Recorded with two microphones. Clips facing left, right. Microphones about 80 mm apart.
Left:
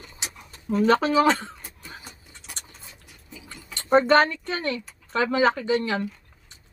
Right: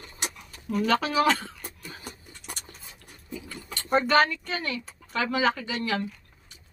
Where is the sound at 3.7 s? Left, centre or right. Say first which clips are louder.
Left 4 dB; left.